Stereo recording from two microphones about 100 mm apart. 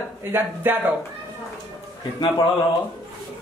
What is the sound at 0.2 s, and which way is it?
Speech, 20° right (ahead or behind).